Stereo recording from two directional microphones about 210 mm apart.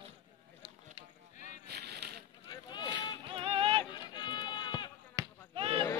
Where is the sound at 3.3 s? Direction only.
25° right (ahead or behind).